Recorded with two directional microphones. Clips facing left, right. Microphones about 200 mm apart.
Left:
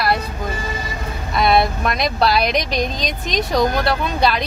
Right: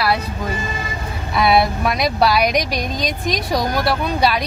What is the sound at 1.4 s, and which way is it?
Speech, 5° right (ahead or behind).